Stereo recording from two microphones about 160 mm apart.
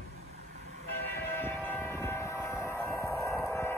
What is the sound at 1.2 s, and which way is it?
Train, 15° left (ahead or behind).